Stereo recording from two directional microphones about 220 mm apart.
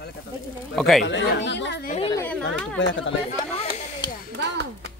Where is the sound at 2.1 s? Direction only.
10° left (ahead or behind).